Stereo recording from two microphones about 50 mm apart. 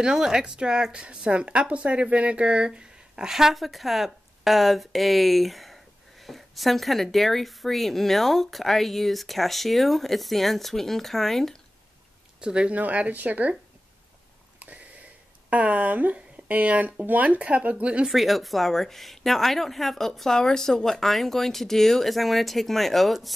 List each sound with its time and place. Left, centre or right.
0.0 s a woman's voice: centre
12.4 s speech: centre
12.7 s speech: right
14.6 s a sound: right
15.5 s speech: right
18.1 s a woman's voice: centre